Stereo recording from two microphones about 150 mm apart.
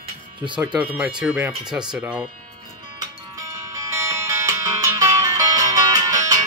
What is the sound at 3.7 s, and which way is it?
Music, 20° right (ahead or behind).